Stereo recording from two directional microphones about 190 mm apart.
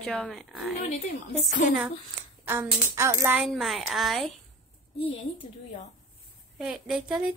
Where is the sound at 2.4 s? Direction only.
15° right (ahead or behind).